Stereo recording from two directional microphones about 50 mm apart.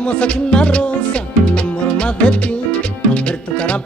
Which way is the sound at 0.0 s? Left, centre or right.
Left.